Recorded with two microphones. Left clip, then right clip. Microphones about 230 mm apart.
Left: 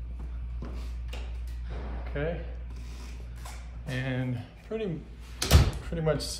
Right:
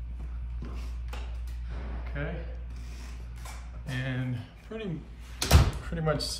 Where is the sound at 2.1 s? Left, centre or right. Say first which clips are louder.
Left 5 dB; centre.